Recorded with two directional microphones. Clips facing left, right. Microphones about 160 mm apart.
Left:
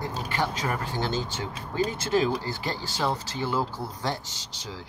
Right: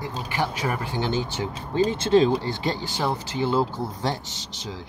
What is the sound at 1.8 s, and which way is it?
Speech, 25° right (ahead or behind).